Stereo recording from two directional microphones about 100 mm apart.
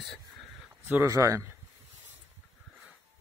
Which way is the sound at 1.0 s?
30° right (ahead or behind).